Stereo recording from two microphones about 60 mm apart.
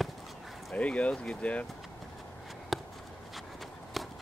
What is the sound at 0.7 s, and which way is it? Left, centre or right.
Speech, left.